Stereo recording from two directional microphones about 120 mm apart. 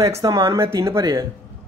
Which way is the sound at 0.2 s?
30° right (ahead or behind).